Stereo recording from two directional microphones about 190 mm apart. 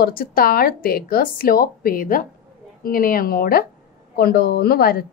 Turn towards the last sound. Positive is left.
turn(degrees=55)  # may be behind; listen again after turning